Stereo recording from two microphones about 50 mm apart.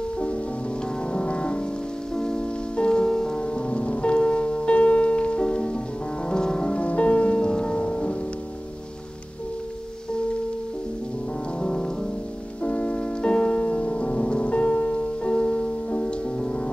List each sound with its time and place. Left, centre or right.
1.1 s music: left
11.6 s rain on surface: centre
12.6 s music: left